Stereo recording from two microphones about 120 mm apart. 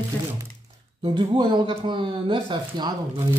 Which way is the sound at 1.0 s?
40° right (ahead or behind).